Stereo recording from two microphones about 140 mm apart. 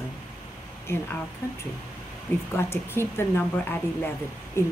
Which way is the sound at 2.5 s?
15° left (ahead or behind).